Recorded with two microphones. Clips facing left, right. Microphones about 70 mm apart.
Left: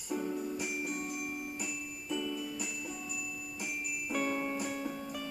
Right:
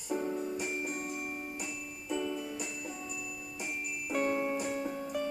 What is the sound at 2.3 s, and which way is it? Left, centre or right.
Glockenspiel, centre.